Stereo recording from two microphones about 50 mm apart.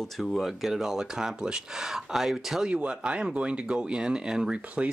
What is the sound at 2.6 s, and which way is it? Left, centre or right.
Speech, right.